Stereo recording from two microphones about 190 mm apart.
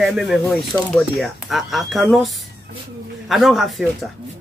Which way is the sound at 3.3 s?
Centre (ahead or behind).